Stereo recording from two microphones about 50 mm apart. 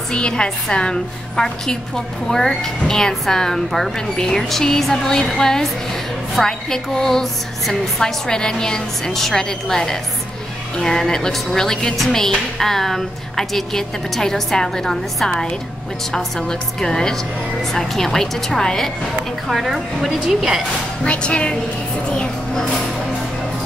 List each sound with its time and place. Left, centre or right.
0.1 s speech: centre
19.5 s a woman's voice: centre
21.0 s speech: left